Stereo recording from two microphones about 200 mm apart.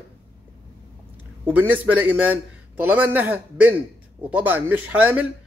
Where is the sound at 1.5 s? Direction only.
10° right (ahead or behind).